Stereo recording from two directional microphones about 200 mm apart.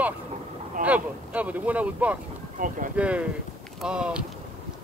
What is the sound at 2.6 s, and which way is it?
Speech, 40° right (ahead or behind).